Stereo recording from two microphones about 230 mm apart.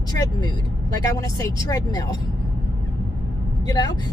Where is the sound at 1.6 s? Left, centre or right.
Centre.